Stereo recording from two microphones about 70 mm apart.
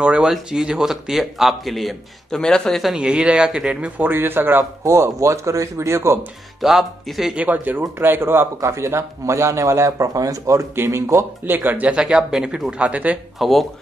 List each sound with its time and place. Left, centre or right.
0.0 s a man's voice: centre
3.0 s speech: centre
4.0 s speech: right
4.8 s a man's voice: right
6.6 s a man's voice: centre
7.7 s speech: right
8.5 s a man's voice: right
11.6 s speech: right
13.4 s a man's voice: centre